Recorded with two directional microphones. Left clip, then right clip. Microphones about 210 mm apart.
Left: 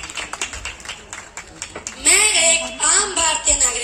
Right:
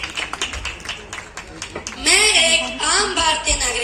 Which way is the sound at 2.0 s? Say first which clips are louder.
Right 2 dB; 55° left (ahead or behind).